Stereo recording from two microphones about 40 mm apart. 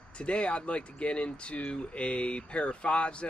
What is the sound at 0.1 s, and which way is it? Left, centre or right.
Speech, left.